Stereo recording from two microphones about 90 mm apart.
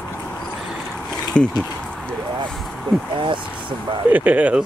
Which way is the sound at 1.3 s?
10° left (ahead or behind).